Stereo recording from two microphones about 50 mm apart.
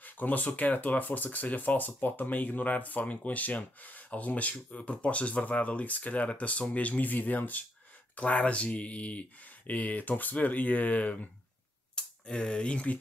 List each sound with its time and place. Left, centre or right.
0.0 s a sound: left
0.6 s speech: left
11.9 s speech: centre